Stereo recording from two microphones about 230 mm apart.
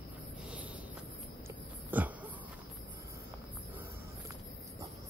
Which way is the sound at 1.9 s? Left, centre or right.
Centre.